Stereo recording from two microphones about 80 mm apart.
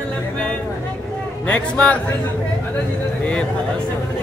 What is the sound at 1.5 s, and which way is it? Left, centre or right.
Speech, centre.